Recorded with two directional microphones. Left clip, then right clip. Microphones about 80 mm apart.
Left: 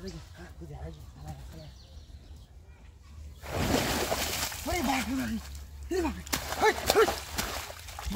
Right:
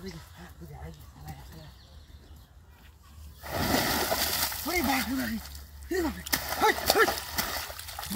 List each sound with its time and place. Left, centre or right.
3.3 s splash: right
6.7 s speech: centre
7.1 s dog: centre